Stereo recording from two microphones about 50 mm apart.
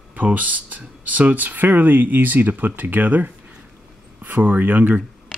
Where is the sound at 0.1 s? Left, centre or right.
Right.